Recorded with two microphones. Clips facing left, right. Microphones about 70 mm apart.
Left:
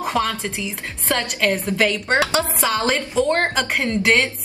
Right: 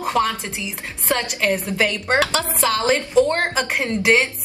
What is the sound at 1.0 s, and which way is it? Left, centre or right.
Speech, centre.